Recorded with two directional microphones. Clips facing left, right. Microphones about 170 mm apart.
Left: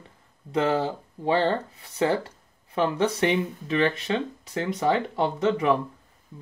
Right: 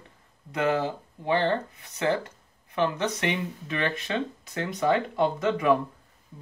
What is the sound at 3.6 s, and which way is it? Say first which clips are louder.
Speech: left 5 dB; 25° left (ahead or behind).